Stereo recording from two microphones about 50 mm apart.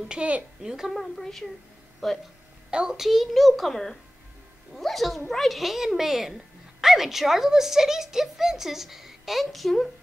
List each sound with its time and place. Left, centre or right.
0.1 s a woman's voice: right
0.6 s a woman's voice: centre
0.9 s a child's voice: centre
2.7 s a woman's voice: centre
3.0 s a child's voice: centre